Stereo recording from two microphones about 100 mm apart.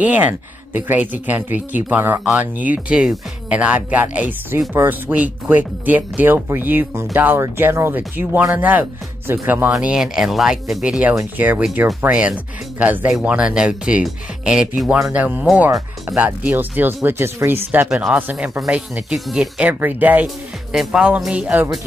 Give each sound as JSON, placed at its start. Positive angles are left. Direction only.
{"t": 0.0, "sound": "speech", "side_deg": -15}
{"t": 9.7, "sound": "speech", "side_deg": -10}
{"t": 17.8, "sound": "speech", "side_deg": -5}
{"t": 19.7, "sound": "speech", "side_deg": -20}
{"t": 20.7, "sound": "speech", "side_deg": -5}